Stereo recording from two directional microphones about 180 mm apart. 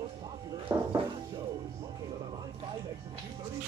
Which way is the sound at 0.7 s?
15° right (ahead or behind).